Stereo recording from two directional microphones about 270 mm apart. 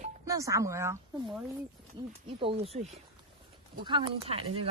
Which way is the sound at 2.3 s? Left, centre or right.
Right.